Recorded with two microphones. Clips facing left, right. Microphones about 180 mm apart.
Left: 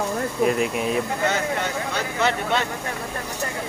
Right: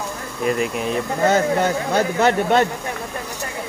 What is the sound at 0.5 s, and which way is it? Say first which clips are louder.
Speech: right 1 dB; centre (ahead or behind).